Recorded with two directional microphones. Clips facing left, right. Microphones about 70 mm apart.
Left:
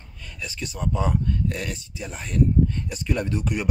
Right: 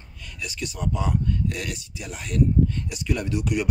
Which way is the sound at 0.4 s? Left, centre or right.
Left.